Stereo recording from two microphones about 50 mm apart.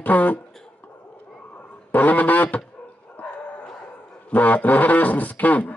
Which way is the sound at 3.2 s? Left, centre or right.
Left.